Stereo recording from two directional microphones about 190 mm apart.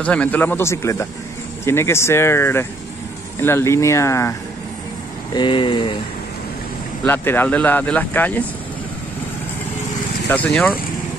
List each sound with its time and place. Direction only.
0.0 s speech: 5° left (ahead or behind)
5.3 s speech: 25° left (ahead or behind)
7.1 s speech: 10° left (ahead or behind)
10.2 s speech: 10° left (ahead or behind)